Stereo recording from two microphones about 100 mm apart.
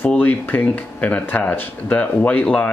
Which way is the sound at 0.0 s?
20° left (ahead or behind).